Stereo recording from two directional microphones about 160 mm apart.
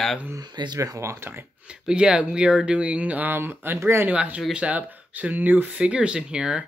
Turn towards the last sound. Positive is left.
turn(degrees=-5)  # may be behind; listen again after turning